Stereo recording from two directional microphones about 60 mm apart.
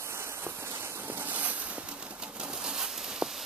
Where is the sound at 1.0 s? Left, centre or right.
Right.